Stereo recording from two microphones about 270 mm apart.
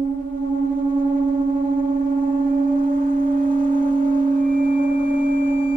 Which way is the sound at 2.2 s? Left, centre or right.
Right.